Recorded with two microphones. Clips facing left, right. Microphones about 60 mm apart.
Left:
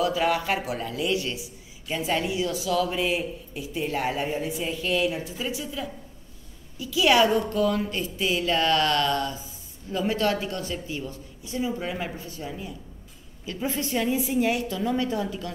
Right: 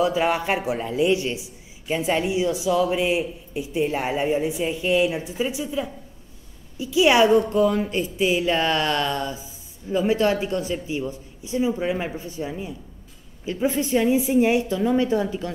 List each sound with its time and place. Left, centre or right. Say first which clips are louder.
0.0 s a man's voice: right 3 dB; right